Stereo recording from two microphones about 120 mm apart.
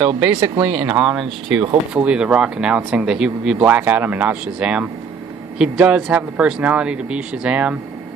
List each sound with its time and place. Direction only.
0.3 s speech: 35° right (ahead or behind)
0.7 s speech: 10° right (ahead or behind)